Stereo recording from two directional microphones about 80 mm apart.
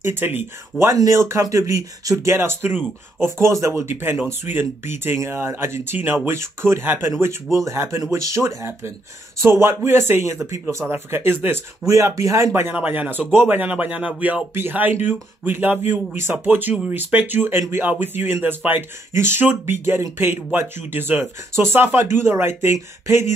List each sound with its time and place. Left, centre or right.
0.0 s speech: right
0.8 s speech: right
2.3 s speech: right
11.8 s speech: right
12.7 s speech: centre